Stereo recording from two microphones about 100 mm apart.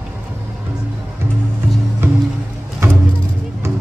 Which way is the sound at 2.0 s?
25° right (ahead or behind).